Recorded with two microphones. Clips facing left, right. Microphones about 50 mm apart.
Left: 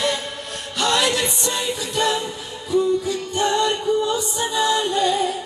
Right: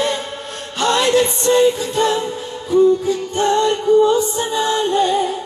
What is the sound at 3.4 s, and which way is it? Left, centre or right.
Music, right.